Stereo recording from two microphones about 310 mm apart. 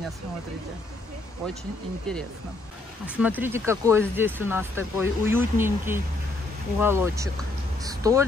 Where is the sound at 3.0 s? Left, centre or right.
Centre.